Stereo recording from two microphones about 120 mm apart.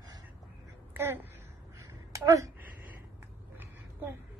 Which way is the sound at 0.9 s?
20° right (ahead or behind).